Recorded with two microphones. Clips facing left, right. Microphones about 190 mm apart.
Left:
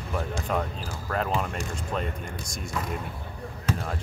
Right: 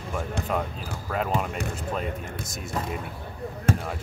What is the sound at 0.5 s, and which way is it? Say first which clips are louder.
Speech: left 1 dB; 5° right (ahead or behind).